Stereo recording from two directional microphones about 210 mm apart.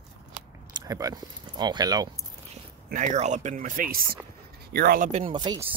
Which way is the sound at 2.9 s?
35° right (ahead or behind).